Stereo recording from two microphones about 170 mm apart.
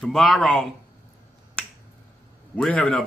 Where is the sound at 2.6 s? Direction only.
5° left (ahead or behind).